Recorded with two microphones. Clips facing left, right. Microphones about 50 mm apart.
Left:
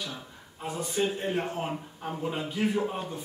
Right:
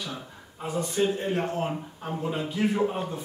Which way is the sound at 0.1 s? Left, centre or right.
Centre.